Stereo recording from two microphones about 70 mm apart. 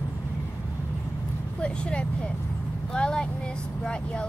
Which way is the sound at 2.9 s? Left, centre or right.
Centre.